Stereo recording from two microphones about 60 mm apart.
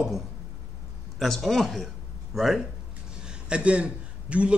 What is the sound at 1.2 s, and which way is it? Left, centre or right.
A man's voice, centre.